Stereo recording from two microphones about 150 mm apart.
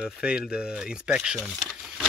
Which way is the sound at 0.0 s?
5° right (ahead or behind).